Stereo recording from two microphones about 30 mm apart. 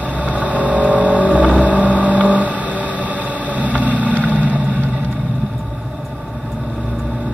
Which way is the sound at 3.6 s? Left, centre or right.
Right.